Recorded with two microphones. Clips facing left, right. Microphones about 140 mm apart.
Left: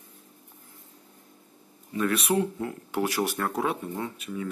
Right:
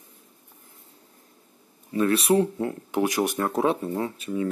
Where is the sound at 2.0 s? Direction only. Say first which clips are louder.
Right 5 dB; 30° right (ahead or behind).